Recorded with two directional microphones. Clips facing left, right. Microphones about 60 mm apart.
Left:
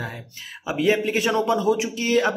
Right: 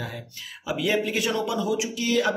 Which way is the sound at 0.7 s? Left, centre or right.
Left.